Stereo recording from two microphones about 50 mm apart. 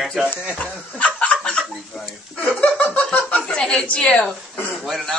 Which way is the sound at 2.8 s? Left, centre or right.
Left.